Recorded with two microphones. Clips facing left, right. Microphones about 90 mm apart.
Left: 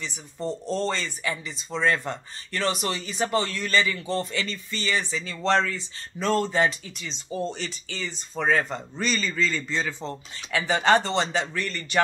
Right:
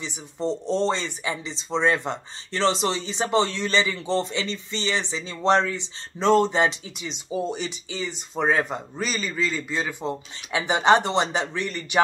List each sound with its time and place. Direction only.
0.0 s speech: 20° right (ahead or behind)